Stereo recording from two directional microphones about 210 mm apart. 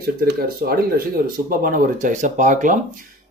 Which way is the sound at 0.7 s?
45° right (ahead or behind).